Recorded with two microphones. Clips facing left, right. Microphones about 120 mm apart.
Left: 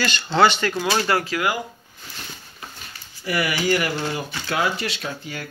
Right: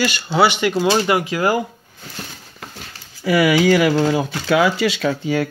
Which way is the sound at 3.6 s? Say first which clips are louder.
Right 8 dB; 90° right.